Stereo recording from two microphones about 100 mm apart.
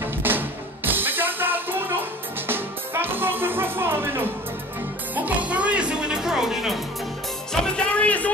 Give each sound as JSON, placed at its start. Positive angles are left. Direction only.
{"t": 0.0, "sound": "music", "side_deg": -20}
{"t": 7.5, "sound": "music", "side_deg": 10}